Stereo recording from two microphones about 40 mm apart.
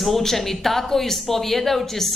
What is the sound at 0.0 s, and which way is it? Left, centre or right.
Speech, centre.